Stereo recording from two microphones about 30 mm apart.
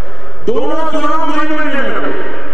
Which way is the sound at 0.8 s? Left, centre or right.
Centre.